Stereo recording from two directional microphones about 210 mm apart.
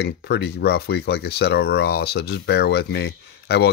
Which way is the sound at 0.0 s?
50° left (ahead or behind).